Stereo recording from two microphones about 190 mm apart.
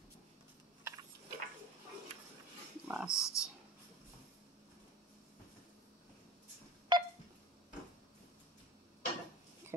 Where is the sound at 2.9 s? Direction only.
5° right (ahead or behind).